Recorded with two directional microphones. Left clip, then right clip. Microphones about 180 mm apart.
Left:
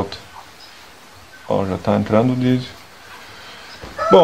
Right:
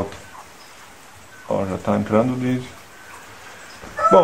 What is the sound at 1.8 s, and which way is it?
Speech, 45° left (ahead or behind).